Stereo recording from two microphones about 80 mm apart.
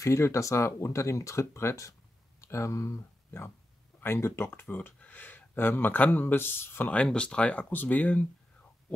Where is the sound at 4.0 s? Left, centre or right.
Left.